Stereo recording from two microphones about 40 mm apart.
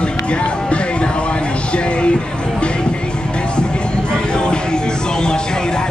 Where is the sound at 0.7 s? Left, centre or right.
Left.